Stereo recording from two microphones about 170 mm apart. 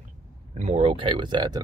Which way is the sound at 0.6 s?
35° right (ahead or behind).